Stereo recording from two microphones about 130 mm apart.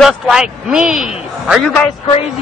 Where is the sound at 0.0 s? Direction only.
5° right (ahead or behind).